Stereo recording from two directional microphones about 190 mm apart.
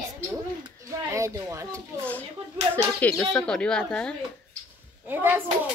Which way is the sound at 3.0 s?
5° left (ahead or behind).